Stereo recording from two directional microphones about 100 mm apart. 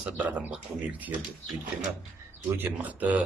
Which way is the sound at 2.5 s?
15° right (ahead or behind).